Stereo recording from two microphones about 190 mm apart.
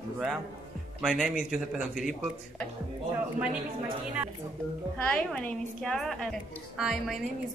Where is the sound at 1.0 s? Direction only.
Centre (ahead or behind).